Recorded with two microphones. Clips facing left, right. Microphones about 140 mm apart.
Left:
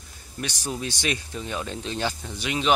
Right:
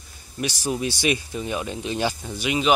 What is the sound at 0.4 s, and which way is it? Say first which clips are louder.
Speech: right 5 dB; 10° right (ahead or behind).